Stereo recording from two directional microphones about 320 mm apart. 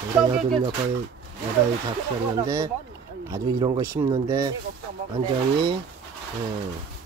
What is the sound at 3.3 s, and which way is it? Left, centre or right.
Speech, centre.